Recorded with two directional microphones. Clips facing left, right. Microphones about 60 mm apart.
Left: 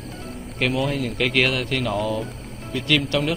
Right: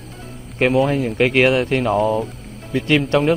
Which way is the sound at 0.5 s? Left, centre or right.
Right.